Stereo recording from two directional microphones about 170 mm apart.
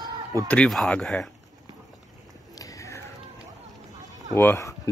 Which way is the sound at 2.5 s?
20° left (ahead or behind).